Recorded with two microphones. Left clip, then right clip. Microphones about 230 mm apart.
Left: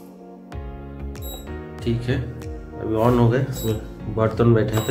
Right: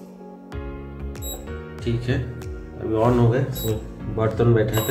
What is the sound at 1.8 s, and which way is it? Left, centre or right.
Speech, centre.